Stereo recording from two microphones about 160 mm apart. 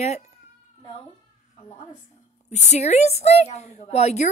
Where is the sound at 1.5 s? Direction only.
30° left (ahead or behind).